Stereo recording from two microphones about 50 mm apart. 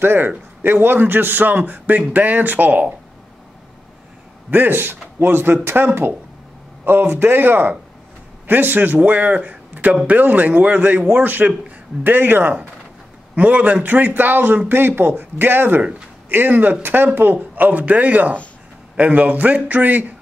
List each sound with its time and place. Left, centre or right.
0.0 s a man's voice: right
4.5 s a man's voice: right
13.4 s a man's voice: right